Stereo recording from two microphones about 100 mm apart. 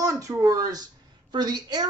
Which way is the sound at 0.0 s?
35° right (ahead or behind).